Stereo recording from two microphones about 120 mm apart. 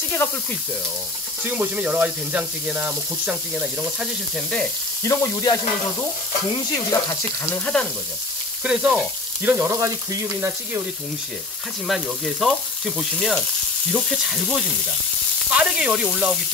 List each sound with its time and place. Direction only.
0.1 s speech: 15° left (ahead or behind)
1.4 s speech: 15° right (ahead or behind)
5.0 s speech: 25° left (ahead or behind)
8.6 s frying: 5° right (ahead or behind)
9.4 s speech: 20° right (ahead or behind)
11.9 s frying: centre (ahead or behind)
15.5 s speech: 5° right (ahead or behind)